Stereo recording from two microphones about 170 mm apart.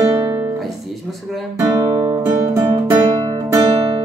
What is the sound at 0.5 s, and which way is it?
Music, centre (ahead or behind).